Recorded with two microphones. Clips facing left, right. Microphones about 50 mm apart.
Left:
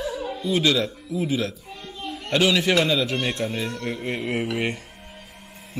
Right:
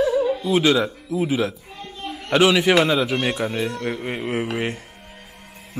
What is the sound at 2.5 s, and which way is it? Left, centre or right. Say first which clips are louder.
A man's voice: right 3 dB; centre.